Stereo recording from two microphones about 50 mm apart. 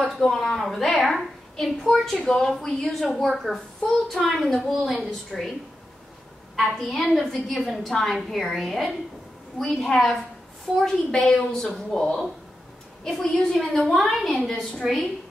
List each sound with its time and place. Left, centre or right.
0.0 s a woman's voice: centre
6.8 s a woman's voice: centre